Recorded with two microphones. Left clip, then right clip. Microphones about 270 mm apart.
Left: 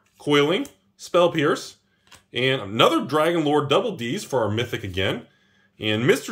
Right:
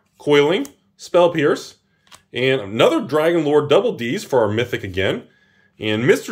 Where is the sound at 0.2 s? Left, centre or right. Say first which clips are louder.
Right 5 dB; centre.